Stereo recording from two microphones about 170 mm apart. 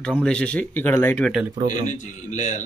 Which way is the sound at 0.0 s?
5° left (ahead or behind).